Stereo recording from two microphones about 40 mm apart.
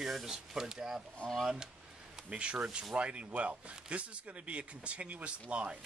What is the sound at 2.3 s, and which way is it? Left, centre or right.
Speech, right.